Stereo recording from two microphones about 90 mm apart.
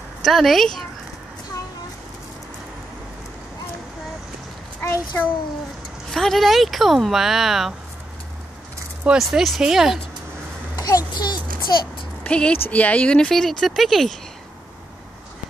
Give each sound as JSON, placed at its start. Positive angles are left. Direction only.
{"t": 0.2, "sound": "speech", "side_deg": 0}
{"t": 4.8, "sound": "a child's voice", "side_deg": 30}
{"t": 6.1, "sound": "speech", "side_deg": 0}
{"t": 9.2, "sound": "speech", "side_deg": 0}
{"t": 10.8, "sound": "a sound", "side_deg": 45}
{"t": 12.2, "sound": "speech", "side_deg": 10}